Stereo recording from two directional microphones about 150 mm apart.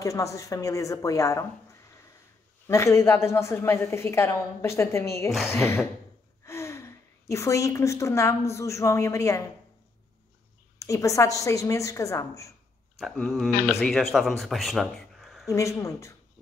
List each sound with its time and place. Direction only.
0.0 s a woman's voice: 20° left (ahead or behind)
10.8 s a woman's voice: 20° left (ahead or behind)
13.0 s speech: centre (ahead or behind)
15.5 s a woman's voice: 20° left (ahead or behind)